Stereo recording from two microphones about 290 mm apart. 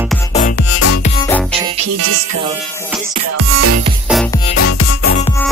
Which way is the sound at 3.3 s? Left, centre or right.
Right.